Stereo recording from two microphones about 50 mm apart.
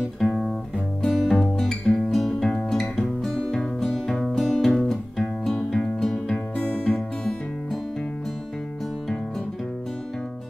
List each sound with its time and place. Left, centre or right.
0.2 s music: centre
6.5 s music: left